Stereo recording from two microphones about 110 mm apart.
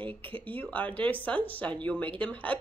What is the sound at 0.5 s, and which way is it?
Speech, 15° left (ahead or behind).